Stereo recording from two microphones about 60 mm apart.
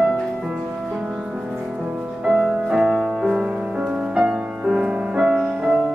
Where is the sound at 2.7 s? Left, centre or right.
Centre.